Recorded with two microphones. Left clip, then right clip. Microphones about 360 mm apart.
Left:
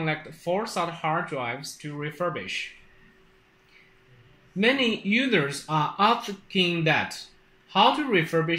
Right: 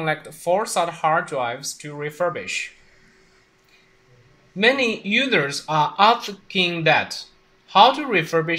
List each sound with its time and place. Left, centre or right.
0.0 s speech: right
4.6 s speech: right